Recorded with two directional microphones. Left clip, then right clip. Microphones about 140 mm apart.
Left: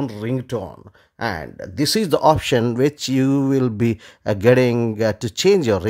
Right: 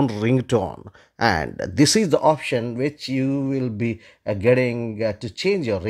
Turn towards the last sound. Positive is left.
turn(degrees=30)  # may be behind; listen again after turning